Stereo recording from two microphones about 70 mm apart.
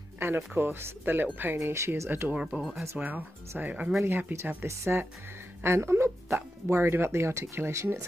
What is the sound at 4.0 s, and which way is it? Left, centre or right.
Speech, right.